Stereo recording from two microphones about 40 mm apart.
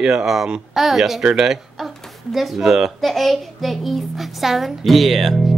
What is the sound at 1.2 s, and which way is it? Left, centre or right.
Speech, right.